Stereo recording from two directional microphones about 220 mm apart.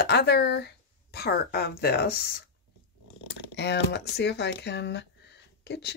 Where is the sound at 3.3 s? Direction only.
50° left (ahead or behind).